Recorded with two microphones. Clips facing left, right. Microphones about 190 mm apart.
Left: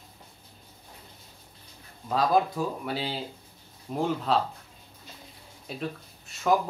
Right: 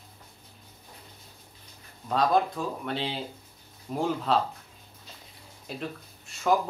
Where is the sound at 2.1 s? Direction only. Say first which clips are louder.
Even; 5° left (ahead or behind).